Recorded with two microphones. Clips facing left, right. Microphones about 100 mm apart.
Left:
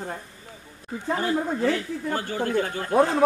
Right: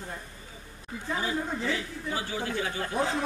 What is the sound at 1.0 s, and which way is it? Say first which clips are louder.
Speech: left 6 dB; 55° left (ahead or behind).